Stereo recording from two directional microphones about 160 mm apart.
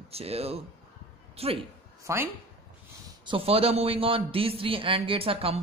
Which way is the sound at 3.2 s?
35° right (ahead or behind).